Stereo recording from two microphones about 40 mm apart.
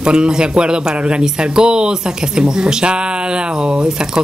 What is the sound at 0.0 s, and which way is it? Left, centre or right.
Speech, right.